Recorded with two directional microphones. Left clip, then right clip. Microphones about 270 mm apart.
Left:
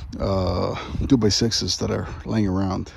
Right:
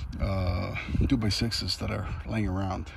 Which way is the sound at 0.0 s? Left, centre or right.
Centre.